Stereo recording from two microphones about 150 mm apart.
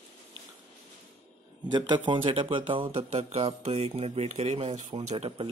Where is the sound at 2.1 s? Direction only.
35° right (ahead or behind).